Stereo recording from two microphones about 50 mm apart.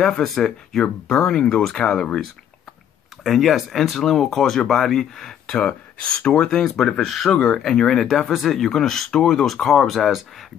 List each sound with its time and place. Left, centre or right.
0.2 s speech: centre
3.3 s speech: centre; by 7.5 s left
7.5 s speech: centre
8.2 s speech: centre